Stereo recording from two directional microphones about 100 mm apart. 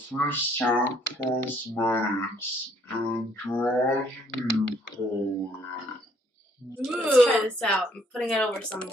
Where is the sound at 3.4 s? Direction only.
15° left (ahead or behind).